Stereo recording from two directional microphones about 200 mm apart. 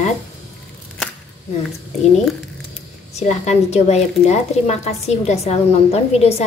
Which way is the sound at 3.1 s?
35° left (ahead or behind).